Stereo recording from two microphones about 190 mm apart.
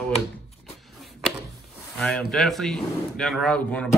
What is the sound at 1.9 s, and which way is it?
Speech, 5° left (ahead or behind).